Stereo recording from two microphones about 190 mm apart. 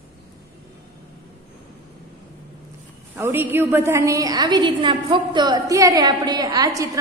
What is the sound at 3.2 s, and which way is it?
A woman's voice, 10° right (ahead or behind).